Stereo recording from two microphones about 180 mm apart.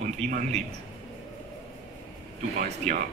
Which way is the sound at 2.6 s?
45° right (ahead or behind).